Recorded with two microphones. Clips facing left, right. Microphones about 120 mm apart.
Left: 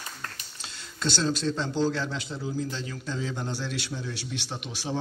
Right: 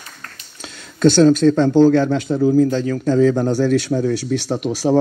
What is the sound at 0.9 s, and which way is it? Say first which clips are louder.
Speech: right 17 dB; 55° right (ahead or behind).